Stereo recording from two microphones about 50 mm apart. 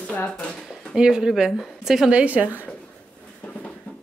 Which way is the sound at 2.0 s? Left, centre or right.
Right.